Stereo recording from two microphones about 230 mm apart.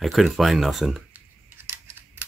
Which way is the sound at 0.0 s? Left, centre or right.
Centre.